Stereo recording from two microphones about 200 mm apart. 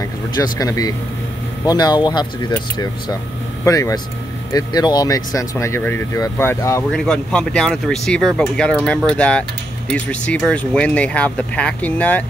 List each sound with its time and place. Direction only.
0.0 s speech: 15° left (ahead or behind)
3.6 s speech: 15° left (ahead or behind)